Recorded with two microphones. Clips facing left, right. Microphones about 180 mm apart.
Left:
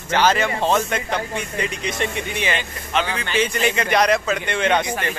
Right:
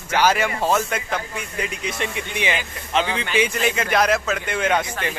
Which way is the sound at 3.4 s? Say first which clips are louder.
Left 1 dB; centre (ahead or behind).